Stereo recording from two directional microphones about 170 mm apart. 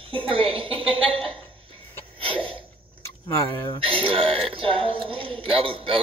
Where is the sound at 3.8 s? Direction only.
30° right (ahead or behind).